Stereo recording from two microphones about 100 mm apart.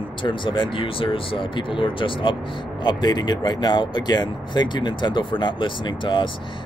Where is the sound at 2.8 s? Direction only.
50° left (ahead or behind).